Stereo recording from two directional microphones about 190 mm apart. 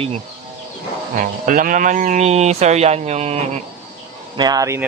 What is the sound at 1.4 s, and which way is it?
Speech, 45° right (ahead or behind).